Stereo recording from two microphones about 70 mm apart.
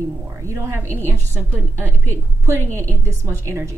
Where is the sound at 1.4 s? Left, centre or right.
Right.